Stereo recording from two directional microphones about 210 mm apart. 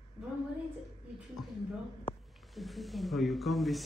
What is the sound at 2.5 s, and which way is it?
A man's voice, centre (ahead or behind).